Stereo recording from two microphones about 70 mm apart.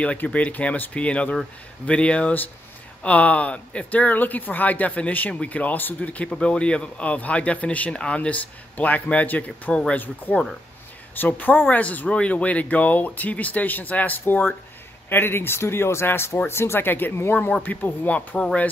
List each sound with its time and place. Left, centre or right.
0.0 s speech: centre